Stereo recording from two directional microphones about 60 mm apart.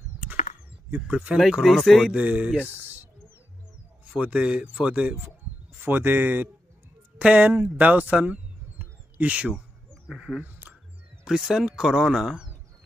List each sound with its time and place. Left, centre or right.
0.8 s speech: right
1.6 s speech: centre
2.1 s speech: right
2.7 s a sound: right
4.0 s speech: right
5.8 s speech: right
10.0 s speech: centre
10.4 s a sound: right
11.2 s speech: centre